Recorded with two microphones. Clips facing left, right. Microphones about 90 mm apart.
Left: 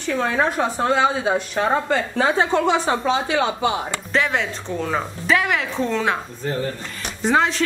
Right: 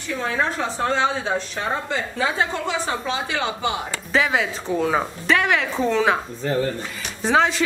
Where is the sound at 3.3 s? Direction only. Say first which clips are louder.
Left 4 dB; 20° left (ahead or behind).